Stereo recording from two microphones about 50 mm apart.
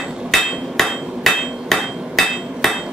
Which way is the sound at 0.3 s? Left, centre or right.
Centre.